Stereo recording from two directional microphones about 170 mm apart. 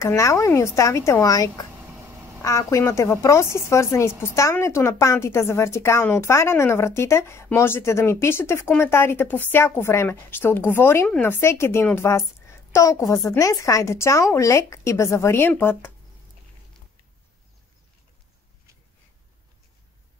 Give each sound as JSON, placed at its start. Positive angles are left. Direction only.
{"t": 0.0, "sound": "a woman's voice", "side_deg": 20}